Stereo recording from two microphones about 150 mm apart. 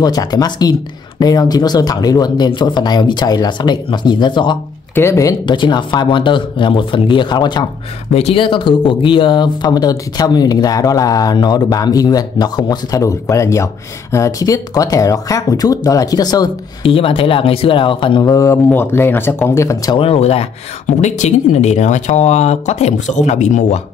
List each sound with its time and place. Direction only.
0.0 s speech: 25° left (ahead or behind)
4.9 s speech: 20° left (ahead or behind)
8.1 s speech: 45° left (ahead or behind); by 16.9 s 25° left (ahead or behind)
16.9 s speech: 40° left (ahead or behind); by 20.0 s 20° left (ahead or behind)
20.0 s speech: 40° left (ahead or behind)